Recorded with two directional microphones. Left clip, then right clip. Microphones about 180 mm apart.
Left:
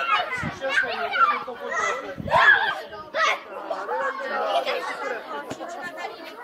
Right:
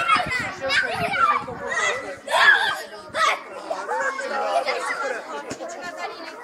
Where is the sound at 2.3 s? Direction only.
20° left (ahead or behind).